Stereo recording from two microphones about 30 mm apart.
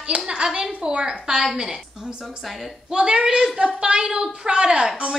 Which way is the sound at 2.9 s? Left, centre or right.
Right.